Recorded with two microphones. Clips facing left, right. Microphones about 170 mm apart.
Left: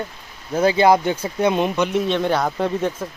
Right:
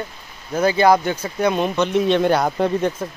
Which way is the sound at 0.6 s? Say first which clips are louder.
Even; 25° left (ahead or behind).